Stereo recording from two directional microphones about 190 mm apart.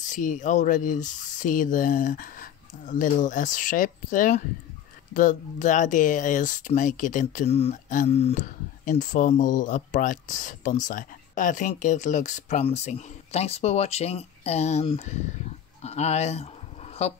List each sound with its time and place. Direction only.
0.1 s speech: 40° left (ahead or behind)